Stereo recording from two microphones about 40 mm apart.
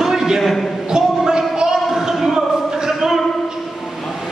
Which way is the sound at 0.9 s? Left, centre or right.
Centre.